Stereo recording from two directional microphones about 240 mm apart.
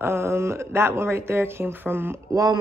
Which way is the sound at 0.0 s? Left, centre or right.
Centre.